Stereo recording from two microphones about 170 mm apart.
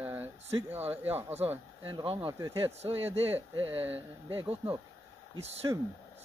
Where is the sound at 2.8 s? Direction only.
35° right (ahead or behind).